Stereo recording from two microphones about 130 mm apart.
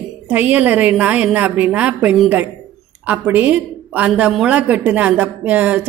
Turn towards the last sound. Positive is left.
turn(degrees=-10)  # may be behind; listen again after turning